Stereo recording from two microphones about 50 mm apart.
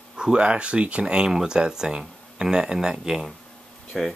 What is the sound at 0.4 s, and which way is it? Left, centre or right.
Speech, right.